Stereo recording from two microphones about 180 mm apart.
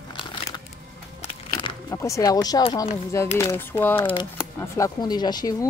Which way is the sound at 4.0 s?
30° left (ahead or behind).